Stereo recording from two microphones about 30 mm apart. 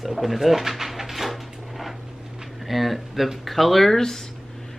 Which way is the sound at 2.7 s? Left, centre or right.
Centre.